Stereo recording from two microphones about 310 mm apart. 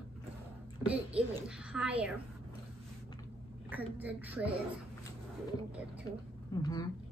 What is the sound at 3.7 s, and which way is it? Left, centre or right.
Speech, centre.